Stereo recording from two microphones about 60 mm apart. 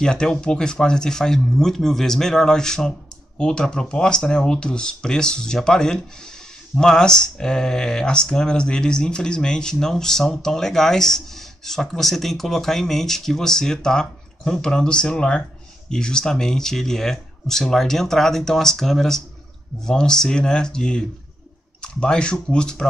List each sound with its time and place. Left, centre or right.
0.0 s speech: centre